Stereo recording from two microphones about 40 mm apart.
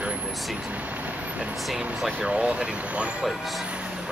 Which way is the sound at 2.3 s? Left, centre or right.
Right.